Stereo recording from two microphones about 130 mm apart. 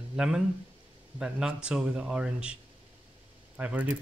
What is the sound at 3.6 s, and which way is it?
Speech, 10° right (ahead or behind).